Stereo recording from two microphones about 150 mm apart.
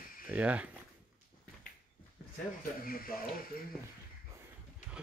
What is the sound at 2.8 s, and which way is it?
Speech, 75° left (ahead or behind).